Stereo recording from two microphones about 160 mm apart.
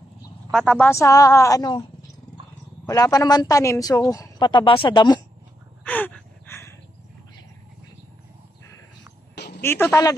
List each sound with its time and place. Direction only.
0.5 s a woman's voice: 5° left (ahead or behind)
0.9 s speech: 20° left (ahead or behind)
2.9 s speech: 20° left (ahead or behind)
5.9 s gasp: 10° left (ahead or behind)
9.3 s a sound: 90° left
9.6 s speech: 15° left (ahead or behind)